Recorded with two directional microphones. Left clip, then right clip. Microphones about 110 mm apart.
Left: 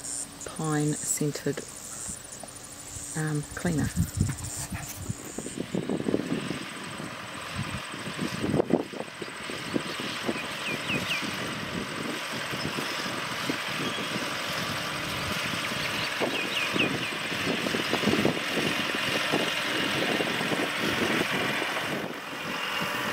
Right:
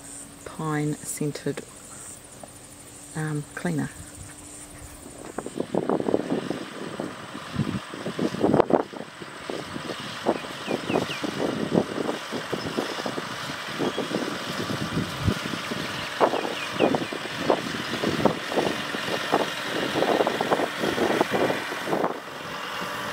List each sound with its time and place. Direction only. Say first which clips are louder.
0.6 s speech: right 2 dB; 20° left (ahead or behind)
1.3 s speech: right 1 dB; 5° right (ahead or behind)
3.2 s speech: right 1 dB; 5° right (ahead or behind)
6.1 s vehicle: right 4 dB; centre (ahead or behind)